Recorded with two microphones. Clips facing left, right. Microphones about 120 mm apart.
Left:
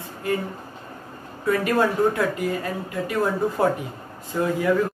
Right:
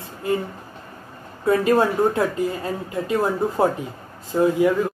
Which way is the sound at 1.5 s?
25° right (ahead or behind).